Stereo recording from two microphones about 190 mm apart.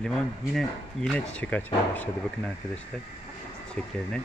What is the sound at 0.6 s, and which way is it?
Speech, 5° left (ahead or behind).